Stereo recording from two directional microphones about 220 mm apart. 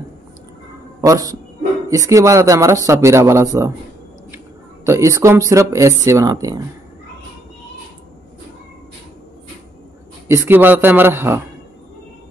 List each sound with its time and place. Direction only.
1.0 s speech: 15° right (ahead or behind)
4.8 s speech: 15° right (ahead or behind)
10.2 s speech: 10° right (ahead or behind)